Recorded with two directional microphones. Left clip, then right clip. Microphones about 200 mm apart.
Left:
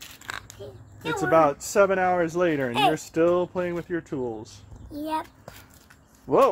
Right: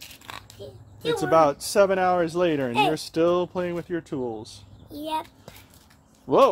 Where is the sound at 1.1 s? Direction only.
15° right (ahead or behind).